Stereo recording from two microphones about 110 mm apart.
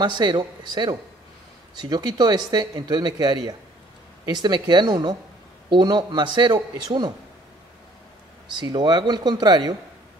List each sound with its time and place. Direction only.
0.0 s a man's voice: 45° right (ahead or behind)
4.4 s a man's voice: 40° right (ahead or behind)
8.5 s speech: 40° right (ahead or behind)